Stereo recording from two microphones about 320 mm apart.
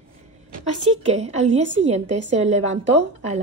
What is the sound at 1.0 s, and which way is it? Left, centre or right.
A woman's voice, right.